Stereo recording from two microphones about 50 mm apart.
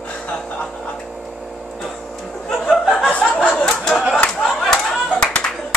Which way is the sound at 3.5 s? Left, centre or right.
Centre.